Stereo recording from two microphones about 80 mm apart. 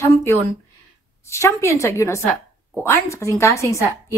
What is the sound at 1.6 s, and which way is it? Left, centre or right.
A woman's voice, left.